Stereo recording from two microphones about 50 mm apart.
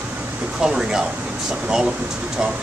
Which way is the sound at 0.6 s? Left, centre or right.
Centre.